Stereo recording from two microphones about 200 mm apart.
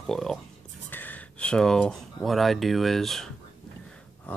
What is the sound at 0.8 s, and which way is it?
Speech, 10° left (ahead or behind).